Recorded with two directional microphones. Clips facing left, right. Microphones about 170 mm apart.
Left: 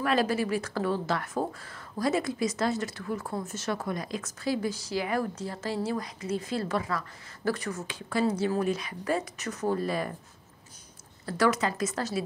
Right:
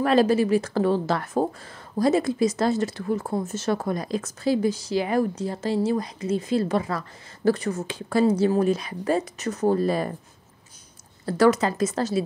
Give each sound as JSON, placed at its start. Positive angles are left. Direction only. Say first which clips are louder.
{"t": 0.0, "sound": "speech", "louder": "right 7 dB", "side_deg": -30}
{"t": 11.2, "sound": "speech", "louder": "right 7 dB", "side_deg": -30}